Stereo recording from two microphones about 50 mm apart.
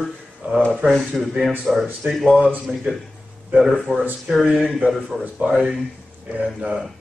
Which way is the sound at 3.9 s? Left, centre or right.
Left.